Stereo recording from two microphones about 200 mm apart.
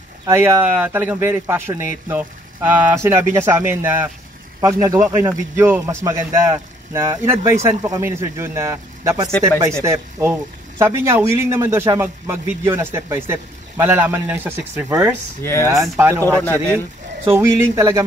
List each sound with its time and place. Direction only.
0.3 s speech: 10° right (ahead or behind)
15.4 s speech: 10° left (ahead or behind)
15.7 s speech: 15° right (ahead or behind)
16.4 s speech: 10° left (ahead or behind)
17.3 s speech: 10° right (ahead or behind)